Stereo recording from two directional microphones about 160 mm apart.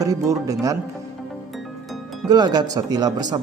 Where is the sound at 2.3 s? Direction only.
25° right (ahead or behind).